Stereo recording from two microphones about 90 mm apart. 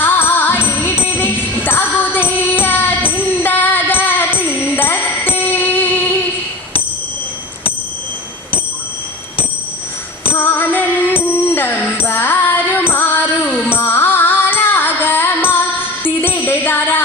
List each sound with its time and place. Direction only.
0.0 s music: 25° left (ahead or behind)
10.3 s music: 25° left (ahead or behind)